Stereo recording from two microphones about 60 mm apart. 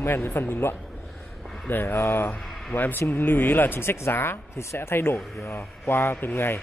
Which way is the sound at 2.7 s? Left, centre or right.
Left.